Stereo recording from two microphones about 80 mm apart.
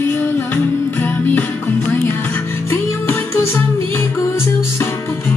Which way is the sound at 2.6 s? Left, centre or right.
Left.